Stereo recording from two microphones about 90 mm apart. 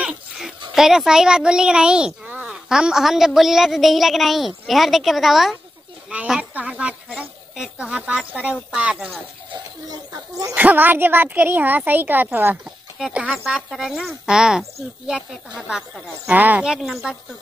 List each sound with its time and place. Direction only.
0.7 s a woman's voice: 5° right (ahead or behind)
9.8 s speech: 40° right (ahead or behind)
10.5 s speech: 20° right (ahead or behind)